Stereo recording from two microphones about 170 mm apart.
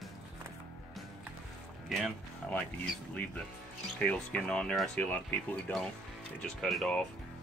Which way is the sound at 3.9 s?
5° left (ahead or behind).